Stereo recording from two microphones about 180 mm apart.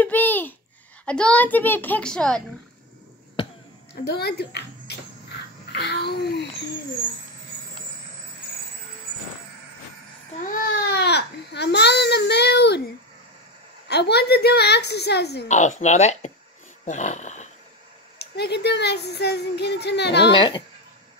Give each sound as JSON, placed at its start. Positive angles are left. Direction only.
{"t": 0.0, "sound": "a sound", "side_deg": 10}
{"t": 1.0, "sound": "a child's voice", "side_deg": 5}
{"t": 3.9, "sound": "speech", "side_deg": 65}
{"t": 5.7, "sound": "babbling", "side_deg": 65}
{"t": 10.4, "sound": "speech", "side_deg": 55}
{"t": 13.8, "sound": "speech", "side_deg": 65}
{"t": 15.4, "sound": "speech", "side_deg": 40}
{"t": 18.2, "sound": "speech", "side_deg": 65}
{"t": 20.2, "sound": "speech", "side_deg": 25}